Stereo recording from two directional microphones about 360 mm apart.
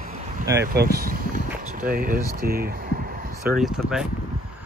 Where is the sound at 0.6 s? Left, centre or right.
Right.